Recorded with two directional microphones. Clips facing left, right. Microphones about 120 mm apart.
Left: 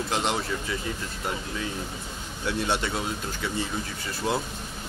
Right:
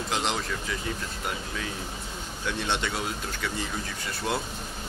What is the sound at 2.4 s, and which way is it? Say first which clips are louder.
Speech: left 3 dB; 5° left (ahead or behind).